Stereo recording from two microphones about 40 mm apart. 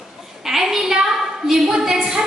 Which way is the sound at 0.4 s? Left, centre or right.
Centre.